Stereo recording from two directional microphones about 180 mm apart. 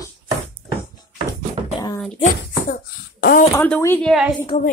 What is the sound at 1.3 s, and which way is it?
Beatboxing, 20° left (ahead or behind).